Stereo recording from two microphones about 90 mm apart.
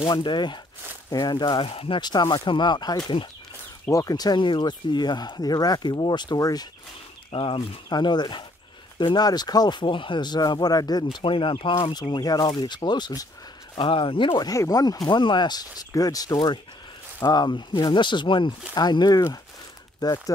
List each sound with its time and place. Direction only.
0.2 s speech: 60° left (ahead or behind); by 2.0 s 85° left
2.0 s speech: 55° left (ahead or behind)
4.4 s speech: 60° left (ahead or behind)
7.2 s speech: 75° left (ahead or behind)
7.9 s speech: 55° left (ahead or behind)
11.1 s speech: 70° left (ahead or behind)
12.0 s speech: 45° left (ahead or behind)
13.7 s speech: 80° left
14.4 s speech: 40° left (ahead or behind)
15.9 s speech: 45° left (ahead or behind)